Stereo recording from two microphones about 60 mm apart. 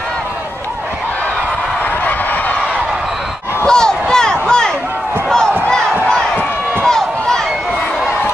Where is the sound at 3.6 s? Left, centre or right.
Centre.